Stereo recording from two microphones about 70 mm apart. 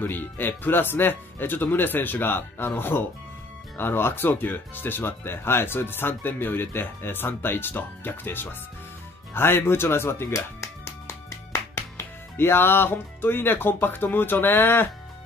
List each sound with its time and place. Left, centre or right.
0.0 s speech: left
9.3 s music: left
12.4 s speech: left